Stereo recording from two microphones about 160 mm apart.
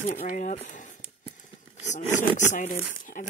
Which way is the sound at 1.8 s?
50° left (ahead or behind).